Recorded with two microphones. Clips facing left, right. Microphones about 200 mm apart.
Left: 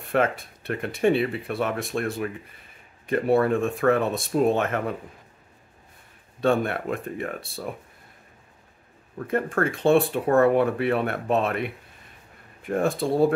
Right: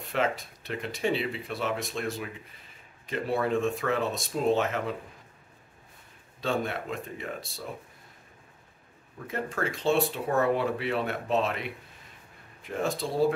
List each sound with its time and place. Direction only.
0.0 s speech: 55° left (ahead or behind)
6.4 s speech: 55° left (ahead or behind)
9.3 s speech: 55° left (ahead or behind)